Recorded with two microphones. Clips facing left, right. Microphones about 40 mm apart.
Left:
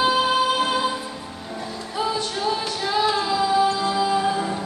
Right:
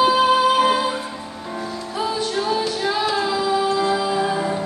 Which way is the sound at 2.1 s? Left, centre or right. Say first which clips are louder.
Right 3 dB; centre.